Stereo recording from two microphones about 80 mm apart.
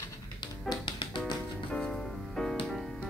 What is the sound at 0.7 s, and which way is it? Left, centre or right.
Music, left.